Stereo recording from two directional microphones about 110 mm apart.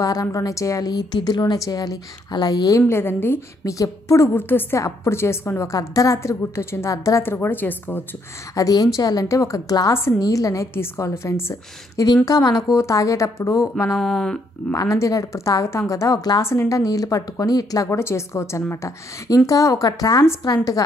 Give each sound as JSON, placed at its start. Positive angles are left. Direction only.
{"t": 0.0, "sound": "a woman's voice", "side_deg": 30}
{"t": 2.9, "sound": "a woman's voice", "side_deg": 20}
{"t": 8.5, "sound": "a woman's voice", "side_deg": 35}
{"t": 12.3, "sound": "a woman's voice", "side_deg": 35}
{"t": 13.9, "sound": "speech", "side_deg": 5}
{"t": 14.8, "sound": "a woman's voice", "side_deg": 30}
{"t": 17.8, "sound": "a woman's voice", "side_deg": 25}